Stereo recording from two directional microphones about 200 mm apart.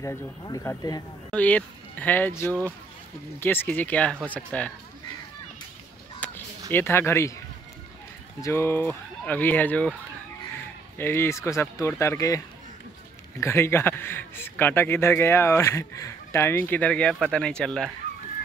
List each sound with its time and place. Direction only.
0.0 s speech: 15° left (ahead or behind)
1.3 s speech: 5° left (ahead or behind)
6.1 s a sound: 10° left (ahead or behind)
6.7 s speech: 10° left (ahead or behind)
8.4 s speech: 15° left (ahead or behind)
11.0 s speech: 10° left (ahead or behind)
13.4 s speech: 10° left (ahead or behind)